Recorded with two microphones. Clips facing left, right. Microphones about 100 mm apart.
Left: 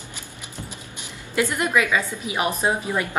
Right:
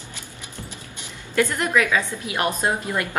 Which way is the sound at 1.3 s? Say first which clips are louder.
Right 1 dB; 10° left (ahead or behind).